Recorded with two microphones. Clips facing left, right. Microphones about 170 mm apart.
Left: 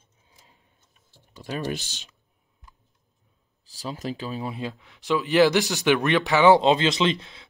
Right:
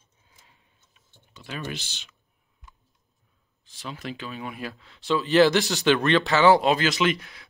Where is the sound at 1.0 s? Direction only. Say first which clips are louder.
Left 6 dB; 35° left (ahead or behind).